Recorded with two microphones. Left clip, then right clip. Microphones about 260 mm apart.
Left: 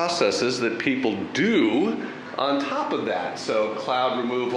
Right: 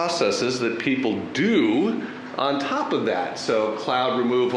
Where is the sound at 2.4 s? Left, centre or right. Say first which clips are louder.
Right 1 dB; left.